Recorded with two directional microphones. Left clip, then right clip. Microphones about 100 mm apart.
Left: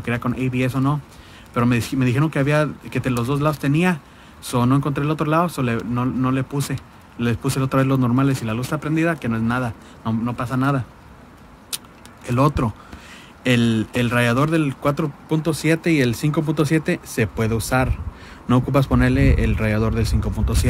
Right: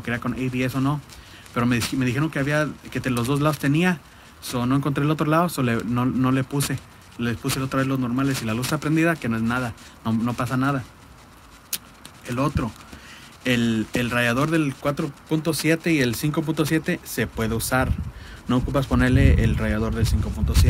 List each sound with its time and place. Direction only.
0.0 s speech: 25° left (ahead or behind)
3.2 s a man's voice: 10° left (ahead or behind)
4.5 s speech: 35° left (ahead or behind)
4.7 s a man's voice: 10° left (ahead or behind)
7.2 s speech: 35° left (ahead or behind)
8.5 s a man's voice: 10° left (ahead or behind)
10.2 s a man's voice: 5° left (ahead or behind)
12.4 s speech: 50° left (ahead or behind)
13.4 s speech: 30° left (ahead or behind)
18.9 s speech: 20° left (ahead or behind)